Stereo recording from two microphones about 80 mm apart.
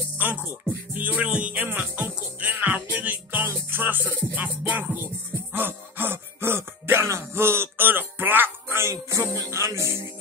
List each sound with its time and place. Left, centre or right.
0.2 s speech: right
0.9 s music: right